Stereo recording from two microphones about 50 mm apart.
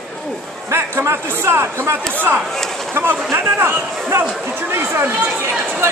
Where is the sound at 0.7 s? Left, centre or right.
Right.